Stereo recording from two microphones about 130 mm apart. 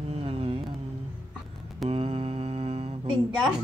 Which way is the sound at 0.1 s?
50° right (ahead or behind).